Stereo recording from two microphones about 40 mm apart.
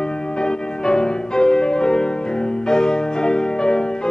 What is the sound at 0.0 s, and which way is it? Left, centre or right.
Music, centre.